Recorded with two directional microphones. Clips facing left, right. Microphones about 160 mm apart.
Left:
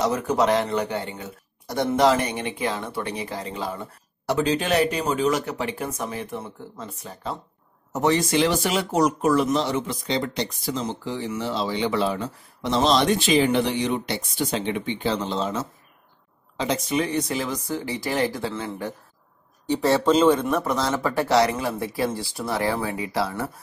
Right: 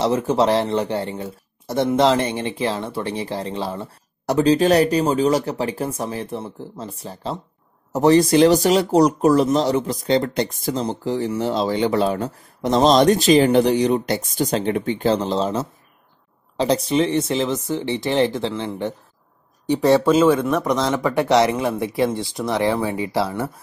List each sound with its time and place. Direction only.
0.0 s speech: 25° right (ahead or behind); by 10.8 s 50° right (ahead or behind)
10.8 s speech: 40° right (ahead or behind)